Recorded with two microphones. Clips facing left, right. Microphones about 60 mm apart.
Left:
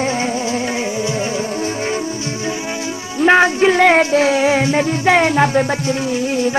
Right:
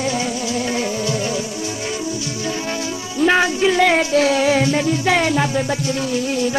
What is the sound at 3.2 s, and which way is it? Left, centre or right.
Music, left.